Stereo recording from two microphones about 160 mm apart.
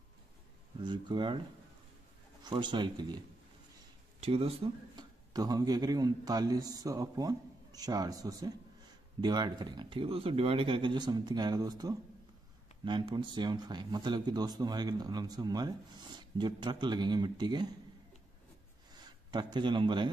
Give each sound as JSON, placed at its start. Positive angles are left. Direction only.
{"t": 0.8, "sound": "speech", "side_deg": -30}
{"t": 2.4, "sound": "speech", "side_deg": -30}
{"t": 4.2, "sound": "speech", "side_deg": -35}
{"t": 5.3, "sound": "speech", "side_deg": -25}
{"t": 18.9, "sound": "a man's voice", "side_deg": -25}